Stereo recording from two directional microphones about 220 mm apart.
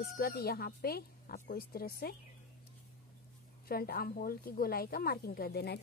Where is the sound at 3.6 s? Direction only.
45° left (ahead or behind).